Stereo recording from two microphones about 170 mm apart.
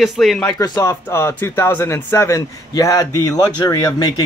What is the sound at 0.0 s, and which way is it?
Speech, centre (ahead or behind).